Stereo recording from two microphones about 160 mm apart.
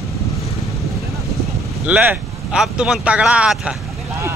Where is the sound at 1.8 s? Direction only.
10° right (ahead or behind).